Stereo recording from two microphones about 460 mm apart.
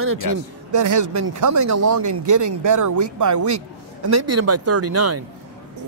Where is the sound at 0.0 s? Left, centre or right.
Right.